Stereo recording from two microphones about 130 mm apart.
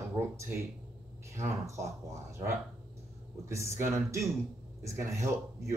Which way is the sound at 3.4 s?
20° right (ahead or behind).